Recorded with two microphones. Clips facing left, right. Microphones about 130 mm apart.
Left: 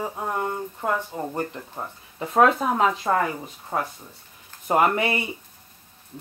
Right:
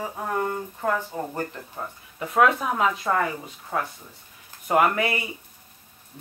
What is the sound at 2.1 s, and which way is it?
Speech, 30° left (ahead or behind).